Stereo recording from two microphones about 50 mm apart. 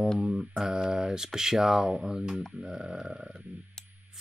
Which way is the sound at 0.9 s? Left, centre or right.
Centre.